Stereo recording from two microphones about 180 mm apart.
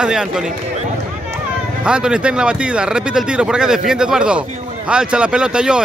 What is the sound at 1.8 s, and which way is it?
Speech, 5° right (ahead or behind).